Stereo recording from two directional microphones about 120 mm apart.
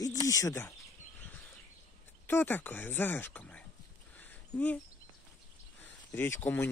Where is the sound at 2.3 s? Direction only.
15° left (ahead or behind).